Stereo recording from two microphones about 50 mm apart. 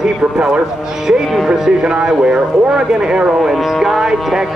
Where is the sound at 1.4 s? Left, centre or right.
Centre.